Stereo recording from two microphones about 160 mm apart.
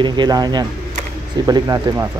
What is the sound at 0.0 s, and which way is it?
Speech, 25° right (ahead or behind).